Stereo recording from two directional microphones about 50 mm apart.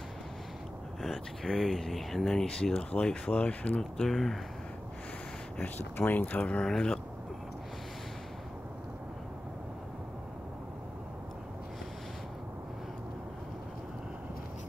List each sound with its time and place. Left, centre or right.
1.0 s speech: centre; by 3.8 s left
4.0 s speech: centre
5.6 s speech: left
6.6 s speech: centre